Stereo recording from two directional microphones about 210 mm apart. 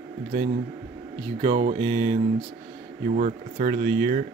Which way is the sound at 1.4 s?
30° right (ahead or behind).